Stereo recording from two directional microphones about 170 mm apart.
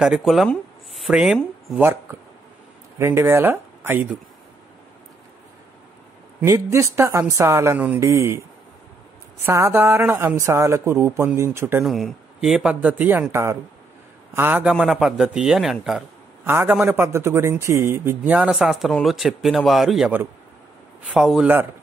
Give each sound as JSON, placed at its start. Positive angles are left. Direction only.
{"t": 0.0, "sound": "a man's voice", "side_deg": -5}
{"t": 6.4, "sound": "a man's voice", "side_deg": -15}
{"t": 9.5, "sound": "a man's voice", "side_deg": -15}
{"t": 11.8, "sound": "speech", "side_deg": 0}
{"t": 16.4, "sound": "a man's voice", "side_deg": -15}
{"t": 21.1, "sound": "speech", "side_deg": -5}